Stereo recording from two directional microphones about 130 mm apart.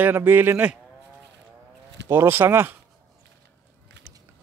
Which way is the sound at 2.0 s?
20° right (ahead or behind).